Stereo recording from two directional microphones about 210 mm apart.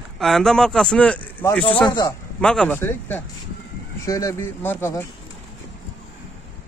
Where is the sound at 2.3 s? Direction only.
5° left (ahead or behind).